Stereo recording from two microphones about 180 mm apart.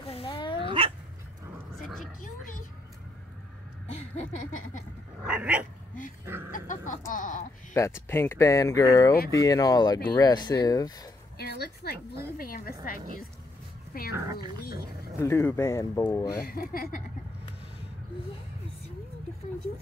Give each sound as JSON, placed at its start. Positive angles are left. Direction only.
{"t": 0.0, "sound": "dog", "side_deg": 30}
{"t": 0.6, "sound": "dog", "side_deg": -30}
{"t": 1.8, "sound": "roaring cats", "side_deg": 0}
{"t": 3.8, "sound": "a sound", "side_deg": 40}
{"t": 5.2, "sound": "dog", "side_deg": -5}
{"t": 6.5, "sound": "speech", "side_deg": 45}
{"t": 7.7, "sound": "speech", "side_deg": 15}
{"t": 9.1, "sound": "speech", "side_deg": 55}
{"t": 9.4, "sound": "speech", "side_deg": 20}
{"t": 11.3, "sound": "a woman's voice", "side_deg": 60}
{"t": 14.1, "sound": "speech", "side_deg": -20}
{"t": 14.6, "sound": "speech", "side_deg": 55}
{"t": 15.1, "sound": "speech", "side_deg": 15}
{"t": 16.3, "sound": "speech", "side_deg": 55}